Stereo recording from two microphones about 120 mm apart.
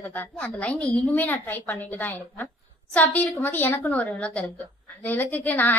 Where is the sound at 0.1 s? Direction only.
15° left (ahead or behind).